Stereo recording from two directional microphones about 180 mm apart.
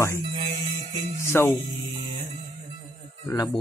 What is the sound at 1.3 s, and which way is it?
Speech, 15° left (ahead or behind).